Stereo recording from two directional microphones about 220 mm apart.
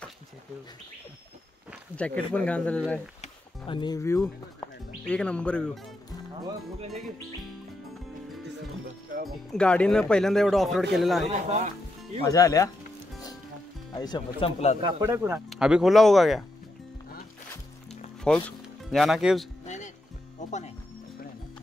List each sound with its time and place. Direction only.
2.0 s speech: 5° left (ahead or behind)
3.2 s music: 20° left (ahead or behind); by 5.7 s 5° left (ahead or behind)
9.5 s speech: 5° left (ahead or behind)
11.2 s speech: 30° right (ahead or behind)
12.2 s speech: 15° left (ahead or behind)
13.9 s speech: 20° left (ahead or behind)
14.8 s speech: 25° right (ahead or behind)
15.0 s speech: 10° right (ahead or behind)
18.3 s speech: 5° left (ahead or behind)
19.6 s music: 30° left (ahead or behind)